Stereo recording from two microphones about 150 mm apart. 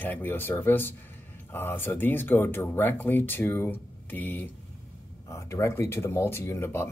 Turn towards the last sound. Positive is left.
turn(degrees=15)  # may be behind; listen again after turning